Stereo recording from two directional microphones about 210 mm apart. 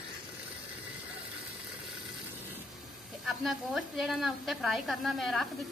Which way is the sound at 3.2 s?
Centre (ahead or behind).